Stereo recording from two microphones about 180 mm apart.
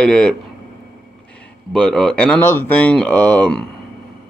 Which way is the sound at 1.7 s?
5° left (ahead or behind).